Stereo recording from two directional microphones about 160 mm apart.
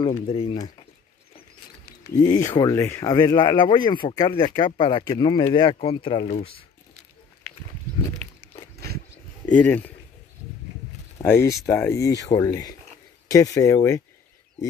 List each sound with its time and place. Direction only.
0.1 s speech: 35° left (ahead or behind)
2.2 s speech: 25° left (ahead or behind); by 6.6 s 40° left (ahead or behind)
8.7 s wild animals: 80° right
9.5 s speech: 10° left (ahead or behind)
11.2 s speech: 15° left (ahead or behind)